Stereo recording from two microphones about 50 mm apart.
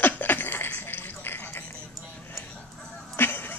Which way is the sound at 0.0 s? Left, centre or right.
Left.